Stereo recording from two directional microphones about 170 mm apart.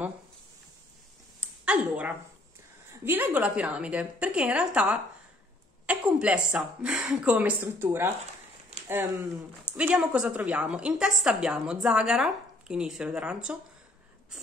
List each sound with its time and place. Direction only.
1.6 s a sound: 10° right (ahead or behind)
2.9 s a woman's voice: 10° right (ahead or behind)
9.8 s a woman's voice: 5° right (ahead or behind)